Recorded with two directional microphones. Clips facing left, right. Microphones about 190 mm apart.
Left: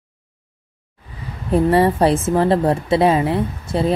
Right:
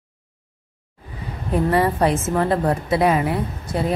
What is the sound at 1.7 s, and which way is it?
A woman's voice, 30° left (ahead or behind).